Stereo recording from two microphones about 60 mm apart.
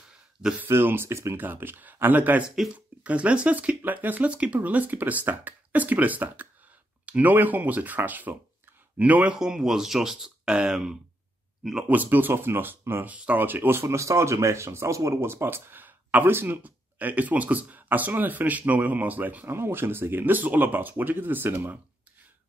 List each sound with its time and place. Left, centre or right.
0.7 s speech: right
1.4 s speech: right
9.4 s speech: centre
11.9 s speech: right
13.1 s speech: right
19.5 s speech: right